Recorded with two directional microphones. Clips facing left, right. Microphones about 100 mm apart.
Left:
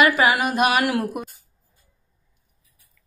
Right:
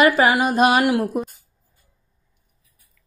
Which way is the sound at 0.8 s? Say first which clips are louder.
Right 4 dB; 20° right (ahead or behind).